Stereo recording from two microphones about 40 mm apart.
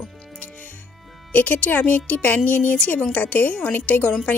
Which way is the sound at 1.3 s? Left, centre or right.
Left.